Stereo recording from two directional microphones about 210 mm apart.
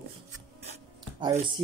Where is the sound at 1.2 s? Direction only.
20° right (ahead or behind).